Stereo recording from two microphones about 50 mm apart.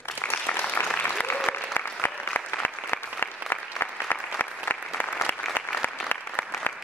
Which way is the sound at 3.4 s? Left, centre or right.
Right.